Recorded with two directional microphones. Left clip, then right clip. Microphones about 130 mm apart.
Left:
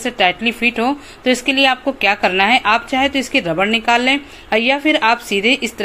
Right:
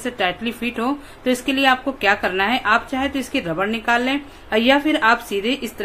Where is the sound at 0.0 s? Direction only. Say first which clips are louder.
Left 7 dB; 20° left (ahead or behind).